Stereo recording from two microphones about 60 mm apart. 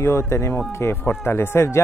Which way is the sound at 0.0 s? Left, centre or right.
Left.